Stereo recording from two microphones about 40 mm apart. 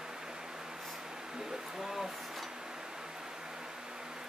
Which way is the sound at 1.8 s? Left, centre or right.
Centre.